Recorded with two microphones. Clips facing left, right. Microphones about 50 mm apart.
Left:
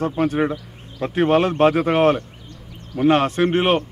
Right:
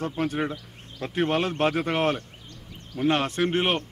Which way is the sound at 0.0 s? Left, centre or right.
Centre.